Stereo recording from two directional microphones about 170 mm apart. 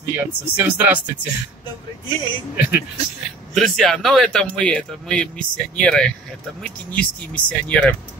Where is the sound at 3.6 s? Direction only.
Centre (ahead or behind).